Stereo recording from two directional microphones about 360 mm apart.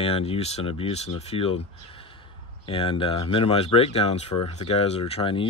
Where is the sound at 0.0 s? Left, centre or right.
Centre.